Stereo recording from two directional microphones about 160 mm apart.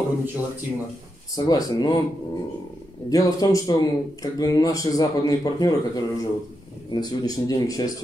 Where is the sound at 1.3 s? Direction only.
25° left (ahead or behind).